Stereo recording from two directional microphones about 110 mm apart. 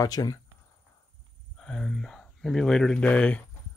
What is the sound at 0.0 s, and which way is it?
Speech, 35° left (ahead or behind).